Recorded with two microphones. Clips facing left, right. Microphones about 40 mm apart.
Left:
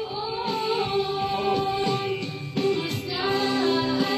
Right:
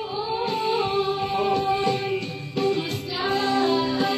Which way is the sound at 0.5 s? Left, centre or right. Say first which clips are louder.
Right 1 dB; centre.